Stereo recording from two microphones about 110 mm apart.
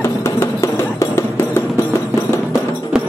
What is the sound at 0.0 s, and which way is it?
Music, 25° left (ahead or behind).